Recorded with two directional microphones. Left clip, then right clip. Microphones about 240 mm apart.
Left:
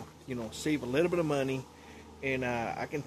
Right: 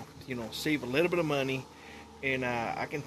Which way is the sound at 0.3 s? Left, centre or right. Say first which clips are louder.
Right 1 dB; centre.